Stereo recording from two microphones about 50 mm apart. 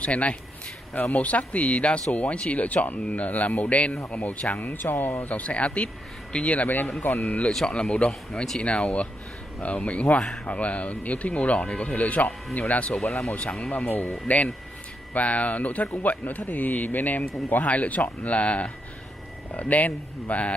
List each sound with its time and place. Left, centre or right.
0.0 s speech: left
12.9 s speech: centre
13.3 s speech: left